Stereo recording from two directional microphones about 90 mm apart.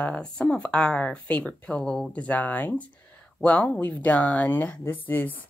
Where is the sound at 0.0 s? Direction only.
10° left (ahead or behind).